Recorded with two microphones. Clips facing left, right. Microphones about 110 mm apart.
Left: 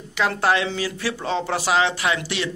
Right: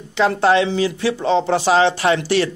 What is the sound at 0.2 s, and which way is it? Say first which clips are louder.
A man's voice: right 6 dB; 25° right (ahead or behind).